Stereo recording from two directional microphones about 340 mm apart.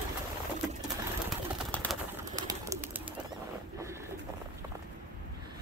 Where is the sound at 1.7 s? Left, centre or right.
Centre.